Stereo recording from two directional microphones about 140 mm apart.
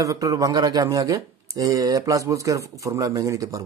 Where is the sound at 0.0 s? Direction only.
25° right (ahead or behind).